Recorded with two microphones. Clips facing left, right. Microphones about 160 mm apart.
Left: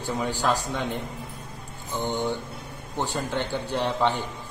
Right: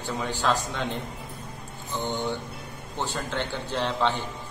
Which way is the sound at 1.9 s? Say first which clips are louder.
Left 2 dB; 15° left (ahead or behind).